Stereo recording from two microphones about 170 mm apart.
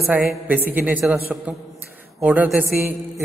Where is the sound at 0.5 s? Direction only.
10° right (ahead or behind).